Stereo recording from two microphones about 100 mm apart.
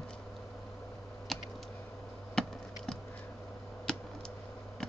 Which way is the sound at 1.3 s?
Centre (ahead or behind).